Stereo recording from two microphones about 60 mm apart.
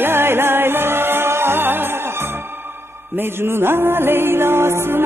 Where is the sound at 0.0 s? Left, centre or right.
Right.